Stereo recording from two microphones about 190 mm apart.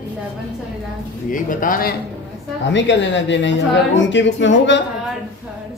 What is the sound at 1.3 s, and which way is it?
Speech, 45° left (ahead or behind).